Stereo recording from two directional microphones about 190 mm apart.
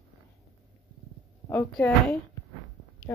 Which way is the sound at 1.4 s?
10° left (ahead or behind).